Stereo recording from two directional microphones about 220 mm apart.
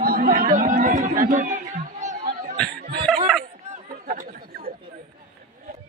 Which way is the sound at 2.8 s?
45° right (ahead or behind).